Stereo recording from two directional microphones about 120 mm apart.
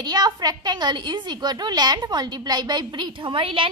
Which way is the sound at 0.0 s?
35° right (ahead or behind).